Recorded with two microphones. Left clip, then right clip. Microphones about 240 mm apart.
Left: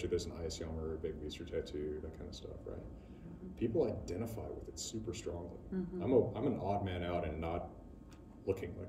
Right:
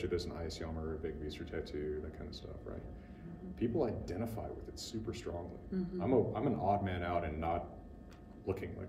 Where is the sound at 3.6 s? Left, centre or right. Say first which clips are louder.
Left 1 dB; centre.